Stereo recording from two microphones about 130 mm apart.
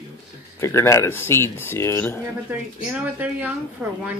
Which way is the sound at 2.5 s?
10° right (ahead or behind).